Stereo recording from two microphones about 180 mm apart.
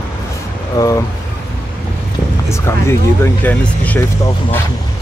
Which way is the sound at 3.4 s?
10° left (ahead or behind).